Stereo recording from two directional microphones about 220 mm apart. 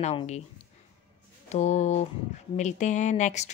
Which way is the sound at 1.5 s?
30° left (ahead or behind).